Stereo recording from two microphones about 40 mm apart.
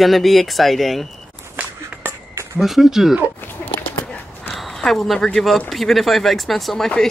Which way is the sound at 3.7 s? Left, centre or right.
Left.